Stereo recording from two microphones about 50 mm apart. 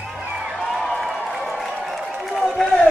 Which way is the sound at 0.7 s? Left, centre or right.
Centre.